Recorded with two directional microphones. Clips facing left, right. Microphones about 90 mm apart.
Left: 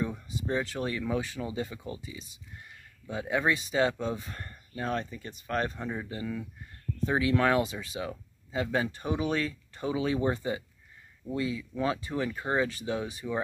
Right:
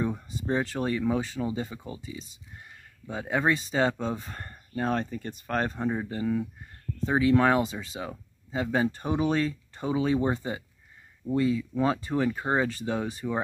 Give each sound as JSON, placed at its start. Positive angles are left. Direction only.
{"t": 0.0, "sound": "speech", "side_deg": -35}